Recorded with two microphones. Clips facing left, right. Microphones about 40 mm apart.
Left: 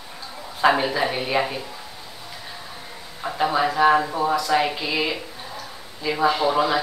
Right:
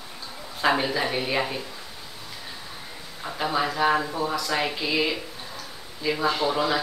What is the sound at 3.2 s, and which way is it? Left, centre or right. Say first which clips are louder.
Speech: left 5 dB; centre.